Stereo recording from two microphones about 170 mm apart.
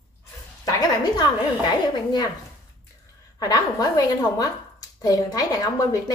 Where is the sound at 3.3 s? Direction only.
20° left (ahead or behind).